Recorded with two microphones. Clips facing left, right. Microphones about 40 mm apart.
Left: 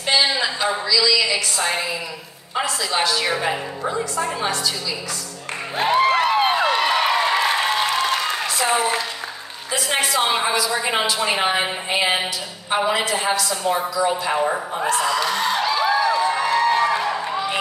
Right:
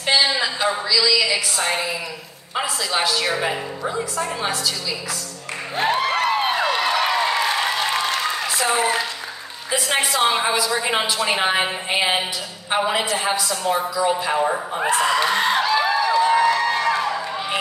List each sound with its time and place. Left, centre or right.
0.0 s a sound: centre
0.9 s a woman's voice: centre
5.8 s a sound: left
6.1 s a sound: centre
8.5 s a woman's voice: centre
9.7 s a woman's voice: centre
14.8 s speech: centre
15.0 s speech: right
15.7 s music: centre
16.0 s music: centre